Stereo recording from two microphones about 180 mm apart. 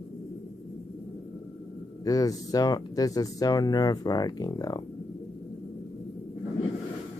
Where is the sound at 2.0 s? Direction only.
20° left (ahead or behind).